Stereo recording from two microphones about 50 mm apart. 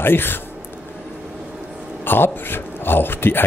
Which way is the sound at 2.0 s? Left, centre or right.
Left.